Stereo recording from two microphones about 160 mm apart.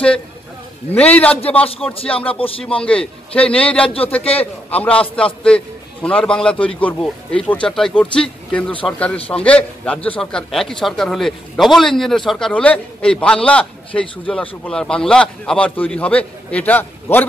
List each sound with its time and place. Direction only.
0.9 s a man's voice: 10° left (ahead or behind)
2.3 s speech: 35° left (ahead or behind)
2.6 s a man's voice: 5° left (ahead or behind)
3.8 s speech: 35° left (ahead or behind)
4.4 s a man's voice: 10° left (ahead or behind)